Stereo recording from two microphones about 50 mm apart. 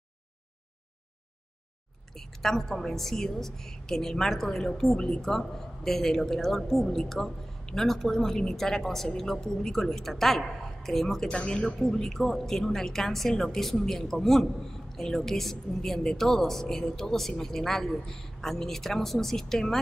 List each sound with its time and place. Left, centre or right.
2.0 s a woman's voice: centre
11.2 s speech: left
11.6 s a woman's voice: centre